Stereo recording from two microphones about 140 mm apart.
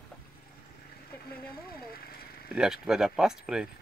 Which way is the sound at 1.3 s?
90° left.